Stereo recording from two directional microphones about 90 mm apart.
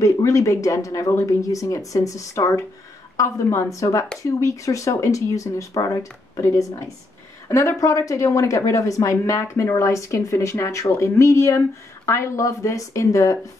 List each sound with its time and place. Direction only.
0.0 s speech: 35° left (ahead or behind)